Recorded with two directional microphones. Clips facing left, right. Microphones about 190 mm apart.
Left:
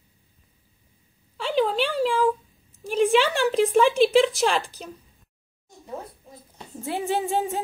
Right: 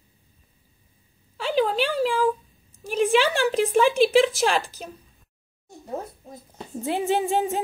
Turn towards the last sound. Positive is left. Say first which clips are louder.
# right 2 dB
turn(degrees=-20)  # may be behind; listen again after turning